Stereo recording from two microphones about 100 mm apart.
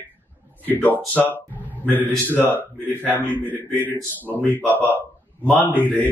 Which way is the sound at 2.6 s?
20° right (ahead or behind).